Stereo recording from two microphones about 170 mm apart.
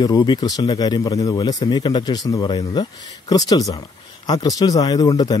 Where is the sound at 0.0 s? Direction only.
20° left (ahead or behind).